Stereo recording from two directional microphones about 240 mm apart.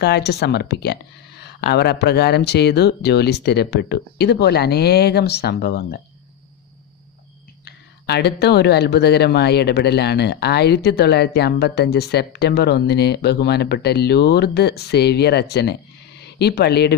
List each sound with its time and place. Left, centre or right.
0.0 s speech: left
7.6 s speech: left